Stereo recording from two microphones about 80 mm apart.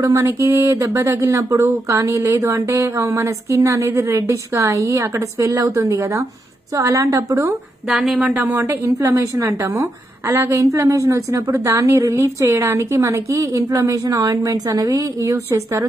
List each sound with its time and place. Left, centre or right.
0.0 s speech: right
7.9 s speech: centre
8.6 s speech: right
9.7 s a woman's voice: right
10.3 s speech: right